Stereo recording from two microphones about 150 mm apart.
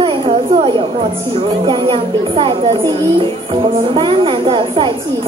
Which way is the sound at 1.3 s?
35° right (ahead or behind).